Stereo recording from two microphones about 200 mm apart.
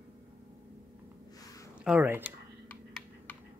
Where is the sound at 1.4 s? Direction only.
15° left (ahead or behind).